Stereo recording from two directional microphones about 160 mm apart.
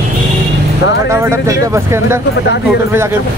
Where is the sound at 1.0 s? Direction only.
15° right (ahead or behind).